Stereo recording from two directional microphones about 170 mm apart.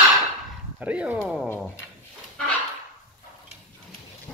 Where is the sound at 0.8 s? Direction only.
5° right (ahead or behind).